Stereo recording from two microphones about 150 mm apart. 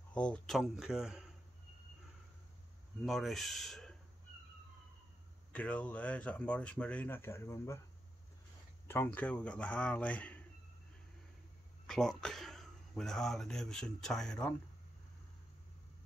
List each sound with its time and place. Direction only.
0.1 s speech: 10° left (ahead or behind)
3.0 s speech: centre (ahead or behind)
5.5 s speech: 10° left (ahead or behind)
8.8 s speech: 15° left (ahead or behind)
11.8 s speech: 5° left (ahead or behind)